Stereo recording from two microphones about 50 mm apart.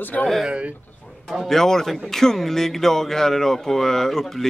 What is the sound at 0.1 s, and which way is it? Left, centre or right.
Speech, left.